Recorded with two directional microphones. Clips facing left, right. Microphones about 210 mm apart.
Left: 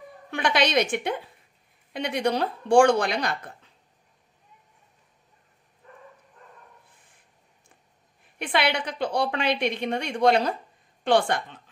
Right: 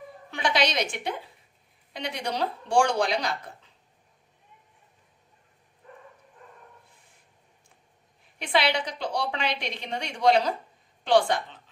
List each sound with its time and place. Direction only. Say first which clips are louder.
0.3 s a sound: left 3 dB; 55° left (ahead or behind)
2.0 s a woman's voice: left 5 dB; 55° left (ahead or behind)
8.4 s a woman's voice: even; 55° left (ahead or behind)